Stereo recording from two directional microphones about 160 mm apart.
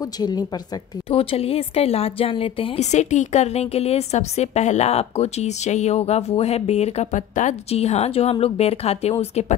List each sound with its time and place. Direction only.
0.2 s a woman's voice: 25° left (ahead or behind)
1.1 s speech: 35° left (ahead or behind)